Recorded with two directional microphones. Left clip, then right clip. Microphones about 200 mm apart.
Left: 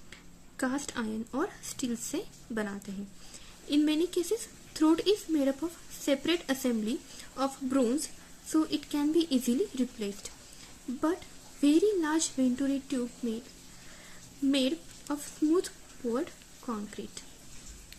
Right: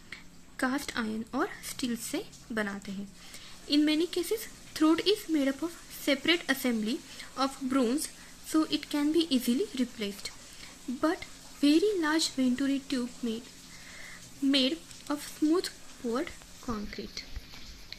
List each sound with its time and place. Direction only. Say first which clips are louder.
0.1 s speech: right 7 dB; 5° right (ahead or behind)
11.6 s speech: even; 10° right (ahead or behind)
14.5 s speech: right 2 dB; 5° right (ahead or behind)